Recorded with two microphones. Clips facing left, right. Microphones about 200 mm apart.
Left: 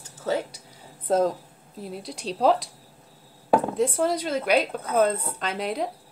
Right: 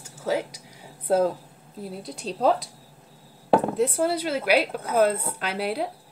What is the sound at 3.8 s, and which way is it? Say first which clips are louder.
A woman's voice: even; 5° right (ahead or behind).